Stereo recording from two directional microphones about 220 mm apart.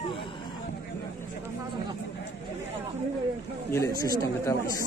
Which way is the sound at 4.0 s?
15° left (ahead or behind).